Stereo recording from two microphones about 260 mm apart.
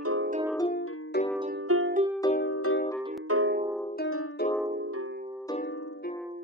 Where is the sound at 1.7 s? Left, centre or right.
Right.